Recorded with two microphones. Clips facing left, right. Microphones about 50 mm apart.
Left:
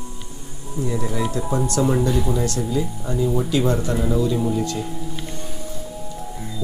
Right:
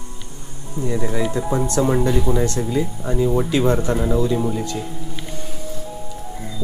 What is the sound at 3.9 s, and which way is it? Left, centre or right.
Speech, centre.